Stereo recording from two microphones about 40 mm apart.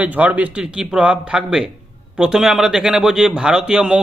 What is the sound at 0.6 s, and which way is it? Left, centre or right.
A man's voice, right.